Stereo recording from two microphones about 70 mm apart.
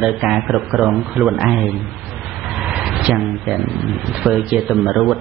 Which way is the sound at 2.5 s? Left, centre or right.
Centre.